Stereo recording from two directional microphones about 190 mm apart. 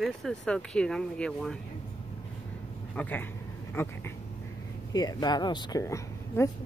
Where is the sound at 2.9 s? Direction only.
10° left (ahead or behind).